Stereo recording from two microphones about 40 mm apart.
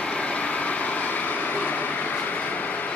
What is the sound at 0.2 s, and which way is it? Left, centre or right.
Vehicle, left.